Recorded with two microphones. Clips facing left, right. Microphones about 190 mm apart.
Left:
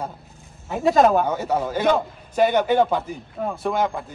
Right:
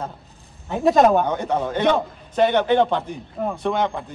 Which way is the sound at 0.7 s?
Centre (ahead or behind).